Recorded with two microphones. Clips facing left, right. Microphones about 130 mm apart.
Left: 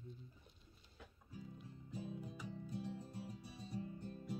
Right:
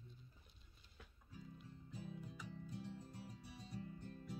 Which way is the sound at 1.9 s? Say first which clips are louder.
Left 5 dB; 10° left (ahead or behind).